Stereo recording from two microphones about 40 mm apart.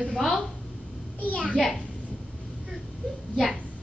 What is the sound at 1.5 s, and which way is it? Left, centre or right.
Speech, centre.